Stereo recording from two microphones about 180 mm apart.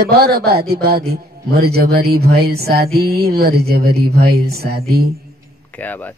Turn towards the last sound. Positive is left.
turn(degrees=-60)  # may be behind; listen again after turning